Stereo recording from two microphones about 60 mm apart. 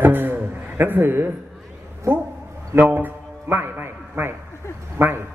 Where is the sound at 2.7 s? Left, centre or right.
Right.